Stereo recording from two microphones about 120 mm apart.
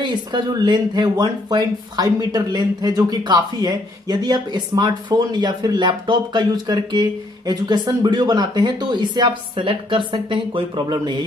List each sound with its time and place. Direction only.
0.0 s speech: 35° right (ahead or behind)